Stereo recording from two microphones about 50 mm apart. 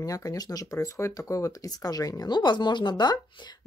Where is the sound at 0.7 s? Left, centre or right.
Left.